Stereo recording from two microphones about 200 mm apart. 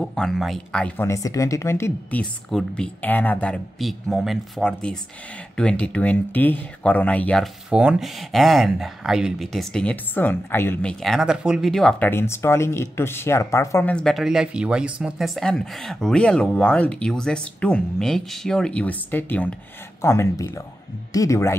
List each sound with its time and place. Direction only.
0.0 s speech: 5° left (ahead or behind)
7.7 s speech: 5° right (ahead or behind); by 21.5 s 15° left (ahead or behind)